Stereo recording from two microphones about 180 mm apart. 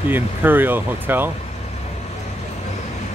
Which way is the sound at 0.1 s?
10° right (ahead or behind).